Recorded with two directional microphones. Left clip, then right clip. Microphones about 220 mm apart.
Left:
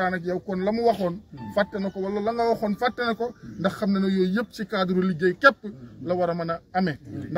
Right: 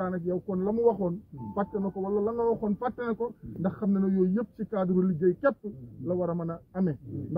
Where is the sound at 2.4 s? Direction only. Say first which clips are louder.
Left 5 dB; 10° left (ahead or behind).